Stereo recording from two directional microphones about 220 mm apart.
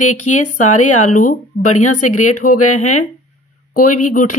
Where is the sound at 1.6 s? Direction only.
90° left.